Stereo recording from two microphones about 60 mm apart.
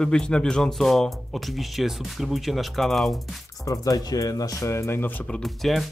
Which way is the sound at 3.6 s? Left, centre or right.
Left.